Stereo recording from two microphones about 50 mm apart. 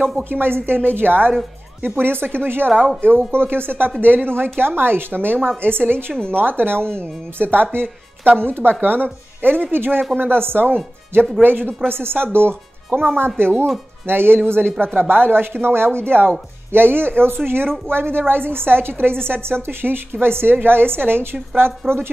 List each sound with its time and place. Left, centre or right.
0.1 s a woman's voice: right
6.1 s speech: centre
6.4 s a woman's voice: right